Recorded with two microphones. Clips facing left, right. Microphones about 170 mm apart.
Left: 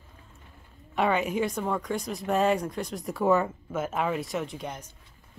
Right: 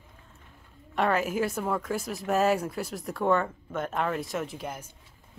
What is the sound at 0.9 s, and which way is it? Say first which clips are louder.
A woman's voice: even; centre (ahead or behind).